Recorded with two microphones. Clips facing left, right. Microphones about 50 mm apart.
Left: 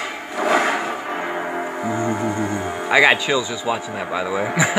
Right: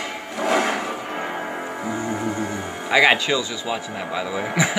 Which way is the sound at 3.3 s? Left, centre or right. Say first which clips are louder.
Left 3 dB; centre.